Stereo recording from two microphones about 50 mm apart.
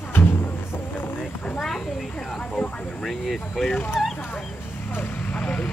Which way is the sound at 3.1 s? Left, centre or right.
Centre.